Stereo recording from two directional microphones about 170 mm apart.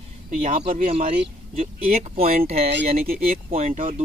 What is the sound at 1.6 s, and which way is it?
Speech, 40° right (ahead or behind).